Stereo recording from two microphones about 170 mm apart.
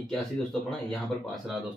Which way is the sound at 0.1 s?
5° left (ahead or behind).